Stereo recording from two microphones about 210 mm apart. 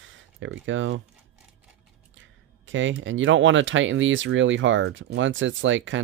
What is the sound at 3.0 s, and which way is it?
Speech, 65° right (ahead or behind).